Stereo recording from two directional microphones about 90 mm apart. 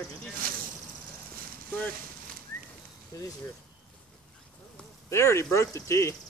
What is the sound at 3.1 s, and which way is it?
Speech, 35° left (ahead or behind).